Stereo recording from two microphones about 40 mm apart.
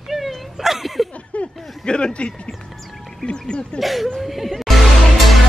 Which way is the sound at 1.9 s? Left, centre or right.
Left.